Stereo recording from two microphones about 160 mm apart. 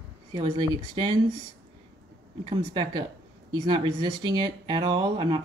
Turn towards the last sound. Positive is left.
turn(degrees=-30)  # may be behind; listen again after turning